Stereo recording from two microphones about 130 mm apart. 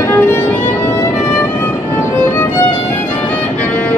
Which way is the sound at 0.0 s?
15° left (ahead or behind).